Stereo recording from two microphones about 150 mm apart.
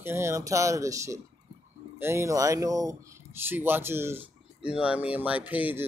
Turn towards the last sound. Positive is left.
turn(degrees=-10)  # may be behind; listen again after turning